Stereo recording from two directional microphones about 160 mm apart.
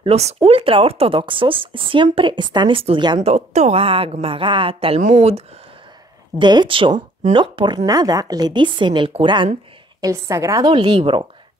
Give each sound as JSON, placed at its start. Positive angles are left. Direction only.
{"t": 0.0, "sound": "speech", "side_deg": -40}
{"t": 3.2, "sound": "speech", "side_deg": -45}
{"t": 6.4, "sound": "a woman's voice", "side_deg": -30}
{"t": 9.9, "sound": "a woman's voice", "side_deg": -20}
{"t": 10.7, "sound": "speech", "side_deg": -30}